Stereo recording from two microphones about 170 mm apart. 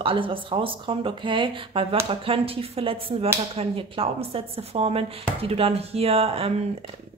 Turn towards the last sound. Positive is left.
turn(degrees=-35)  # may be behind; listen again after turning